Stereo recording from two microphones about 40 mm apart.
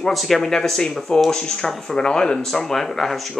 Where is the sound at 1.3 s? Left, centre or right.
Centre.